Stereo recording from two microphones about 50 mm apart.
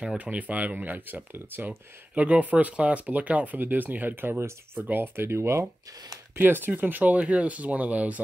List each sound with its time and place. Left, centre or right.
0.2 s speech: right
2.1 s speech: right
6.3 s speech: right